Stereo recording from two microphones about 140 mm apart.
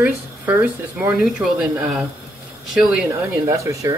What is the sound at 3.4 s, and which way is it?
Speech, 20° right (ahead or behind).